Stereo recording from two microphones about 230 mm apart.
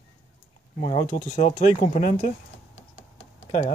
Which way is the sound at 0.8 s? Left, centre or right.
Left.